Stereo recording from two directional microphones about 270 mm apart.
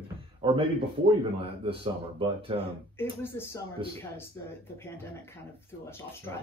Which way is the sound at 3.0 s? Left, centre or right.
Centre.